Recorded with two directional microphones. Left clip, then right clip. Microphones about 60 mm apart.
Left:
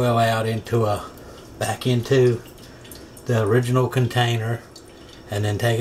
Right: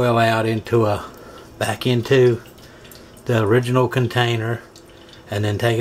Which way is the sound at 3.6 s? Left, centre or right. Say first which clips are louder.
Right 3 dB; right.